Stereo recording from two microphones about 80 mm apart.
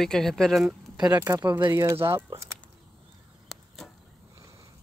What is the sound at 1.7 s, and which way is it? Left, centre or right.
Speech, right.